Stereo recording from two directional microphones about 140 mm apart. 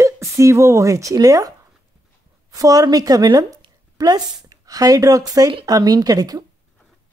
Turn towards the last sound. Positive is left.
turn(degrees=-25)  # may be behind; listen again after turning